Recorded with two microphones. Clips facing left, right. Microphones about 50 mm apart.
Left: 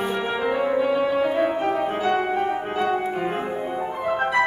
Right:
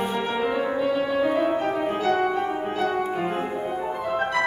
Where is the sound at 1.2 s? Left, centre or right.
Centre.